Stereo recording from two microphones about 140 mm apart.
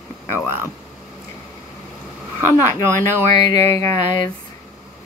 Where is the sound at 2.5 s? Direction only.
20° left (ahead or behind).